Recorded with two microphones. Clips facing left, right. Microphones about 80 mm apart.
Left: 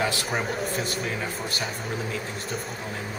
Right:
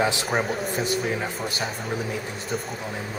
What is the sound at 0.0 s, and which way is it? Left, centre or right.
Speech, centre.